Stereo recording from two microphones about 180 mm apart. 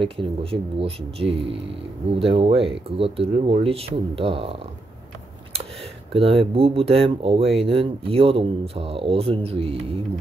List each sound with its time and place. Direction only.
0.0 s speech: 30° right (ahead or behind)
6.1 s speech: 30° right (ahead or behind)